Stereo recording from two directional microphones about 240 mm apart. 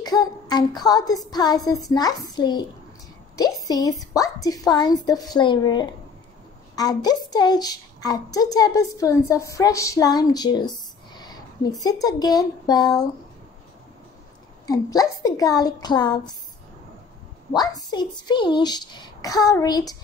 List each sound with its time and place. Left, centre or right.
0.0 s a sound: centre
1.9 s a woman's voice: centre
11.8 s a woman's voice: centre
14.7 s a woman's voice: centre
17.5 s a woman's voice: centre